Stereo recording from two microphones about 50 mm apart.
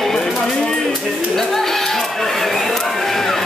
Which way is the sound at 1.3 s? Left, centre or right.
Centre.